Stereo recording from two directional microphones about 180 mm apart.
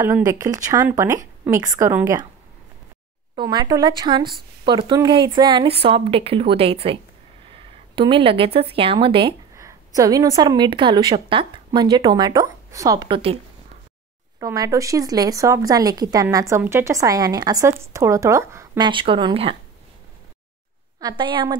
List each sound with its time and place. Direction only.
0.3 s a woman's voice: 20° right (ahead or behind)
3.3 s a woman's voice: 25° right (ahead or behind)
9.6 s speech: 20° right (ahead or behind)
14.4 s speech: 20° right (ahead or behind)
18.9 s speech: 25° right (ahead or behind)
21.0 s speech: 25° right (ahead or behind)